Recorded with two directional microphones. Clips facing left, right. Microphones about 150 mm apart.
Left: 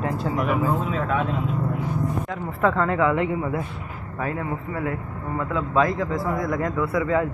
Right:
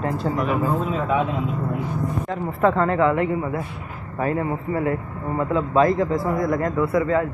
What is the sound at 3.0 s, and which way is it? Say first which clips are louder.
Speech: right 1 dB; 20° left (ahead or behind).